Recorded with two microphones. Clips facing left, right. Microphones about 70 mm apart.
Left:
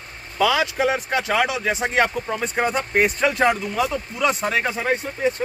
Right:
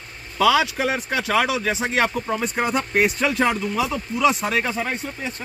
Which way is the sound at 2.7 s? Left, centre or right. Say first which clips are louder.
Right 1 dB; centre.